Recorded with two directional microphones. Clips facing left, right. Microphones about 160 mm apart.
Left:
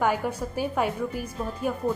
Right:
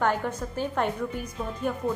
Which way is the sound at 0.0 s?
10° left (ahead or behind).